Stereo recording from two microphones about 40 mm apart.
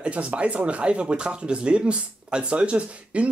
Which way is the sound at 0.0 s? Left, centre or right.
Right.